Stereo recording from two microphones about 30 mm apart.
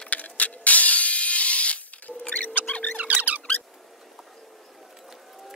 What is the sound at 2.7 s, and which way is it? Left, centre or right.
Music, left.